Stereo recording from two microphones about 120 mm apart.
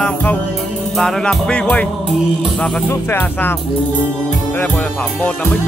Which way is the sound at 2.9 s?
15° left (ahead or behind).